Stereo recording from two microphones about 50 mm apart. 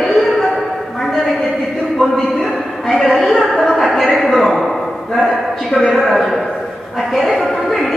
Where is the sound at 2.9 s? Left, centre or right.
Centre.